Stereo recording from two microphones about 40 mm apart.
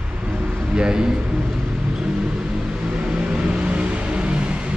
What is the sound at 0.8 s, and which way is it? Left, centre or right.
Speech, centre.